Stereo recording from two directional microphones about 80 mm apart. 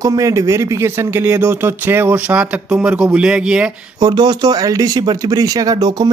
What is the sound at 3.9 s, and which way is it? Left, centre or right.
Speech, right.